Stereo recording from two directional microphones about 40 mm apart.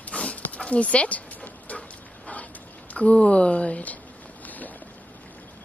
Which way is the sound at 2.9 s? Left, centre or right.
Left.